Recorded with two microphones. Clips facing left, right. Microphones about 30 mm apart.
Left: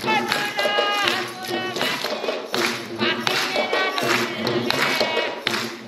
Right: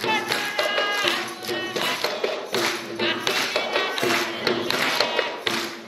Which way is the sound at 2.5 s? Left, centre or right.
Left.